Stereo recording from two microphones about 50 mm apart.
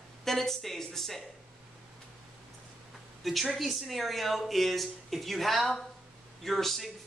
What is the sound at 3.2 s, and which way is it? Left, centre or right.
A woman's voice, centre.